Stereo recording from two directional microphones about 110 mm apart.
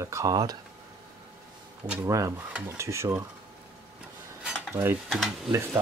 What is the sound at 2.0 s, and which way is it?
Speech, 30° right (ahead or behind).